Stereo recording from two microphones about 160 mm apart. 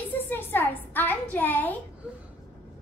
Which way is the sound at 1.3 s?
10° left (ahead or behind).